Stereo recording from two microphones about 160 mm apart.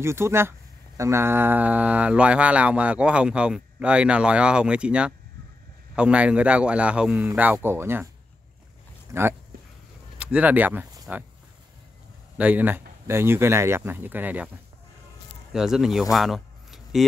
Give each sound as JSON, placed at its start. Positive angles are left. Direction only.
{"t": 0.0, "sound": "speech", "side_deg": -15}
{"t": 9.1, "sound": "speech", "side_deg": -15}
{"t": 12.4, "sound": "speech", "side_deg": -10}
{"t": 15.5, "sound": "speech", "side_deg": -5}